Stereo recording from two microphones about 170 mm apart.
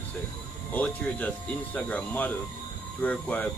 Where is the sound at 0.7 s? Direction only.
10° left (ahead or behind).